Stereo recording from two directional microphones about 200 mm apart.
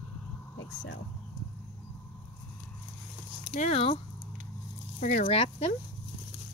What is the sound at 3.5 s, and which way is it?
Speech, 30° left (ahead or behind).